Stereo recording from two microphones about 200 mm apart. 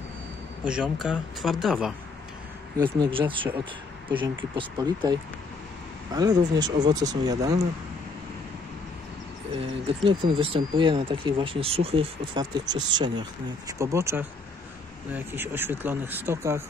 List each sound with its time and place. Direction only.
0.7 s speech: 5° right (ahead or behind)
2.8 s speech: 25° right (ahead or behind)
4.6 s speech: 20° right (ahead or behind)
9.6 s speech: 25° right (ahead or behind)